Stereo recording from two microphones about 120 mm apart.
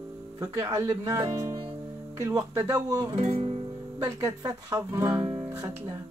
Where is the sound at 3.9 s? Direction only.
25° right (ahead or behind).